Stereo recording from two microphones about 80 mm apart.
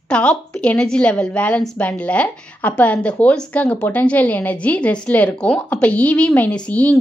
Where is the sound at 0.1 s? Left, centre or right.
Centre.